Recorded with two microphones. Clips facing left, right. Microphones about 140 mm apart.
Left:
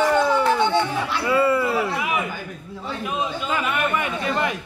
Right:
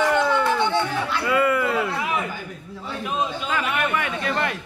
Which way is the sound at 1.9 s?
10° left (ahead or behind).